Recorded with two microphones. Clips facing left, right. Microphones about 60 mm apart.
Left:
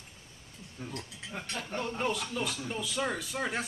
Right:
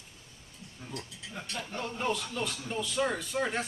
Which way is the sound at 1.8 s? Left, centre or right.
Centre.